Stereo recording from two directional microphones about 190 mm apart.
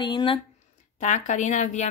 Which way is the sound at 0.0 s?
25° left (ahead or behind).